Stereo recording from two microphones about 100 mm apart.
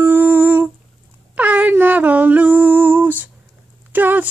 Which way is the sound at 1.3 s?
15° right (ahead or behind).